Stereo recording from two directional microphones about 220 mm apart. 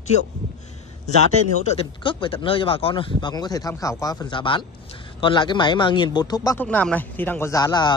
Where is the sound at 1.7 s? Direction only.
25° left (ahead or behind).